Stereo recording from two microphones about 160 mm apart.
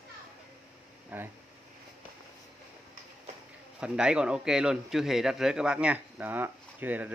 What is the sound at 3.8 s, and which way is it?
A man's voice, 5° right (ahead or behind).